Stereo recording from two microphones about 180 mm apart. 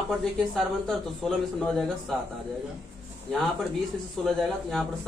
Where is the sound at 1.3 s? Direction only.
5° left (ahead or behind).